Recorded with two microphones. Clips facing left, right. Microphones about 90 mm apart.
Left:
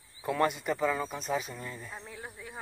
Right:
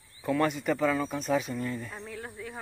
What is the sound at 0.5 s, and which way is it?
Speech, 5° left (ahead or behind).